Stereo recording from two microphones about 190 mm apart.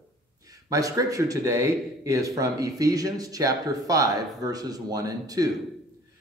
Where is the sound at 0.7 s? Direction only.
15° right (ahead or behind).